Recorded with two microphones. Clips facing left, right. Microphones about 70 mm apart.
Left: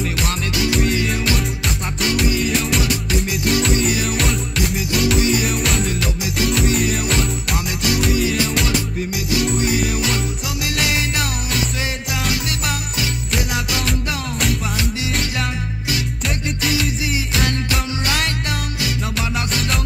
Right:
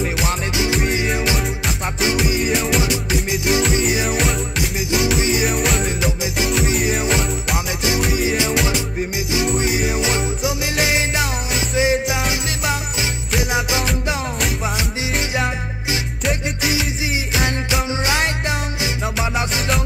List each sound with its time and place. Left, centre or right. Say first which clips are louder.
1.1 s music: right 1 dB; centre
2.1 s music: even; centre
3.3 s music: right 1 dB; right
5.5 s music: right 1 dB; centre
9.6 s music: even; right
18.0 s music: right 2 dB; right